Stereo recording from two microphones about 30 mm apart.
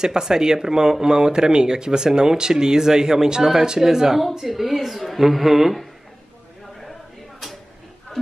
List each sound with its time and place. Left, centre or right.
0.0 s a woman's voice: right; by 5.8 s centre